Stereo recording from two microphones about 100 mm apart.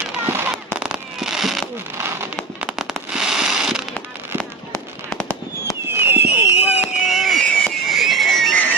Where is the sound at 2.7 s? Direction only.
5° right (ahead or behind).